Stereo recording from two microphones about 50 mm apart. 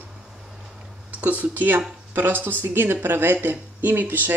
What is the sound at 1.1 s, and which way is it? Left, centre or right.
Speech, right.